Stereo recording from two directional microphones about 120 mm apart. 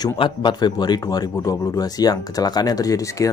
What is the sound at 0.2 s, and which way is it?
A man's voice, 40° left (ahead or behind).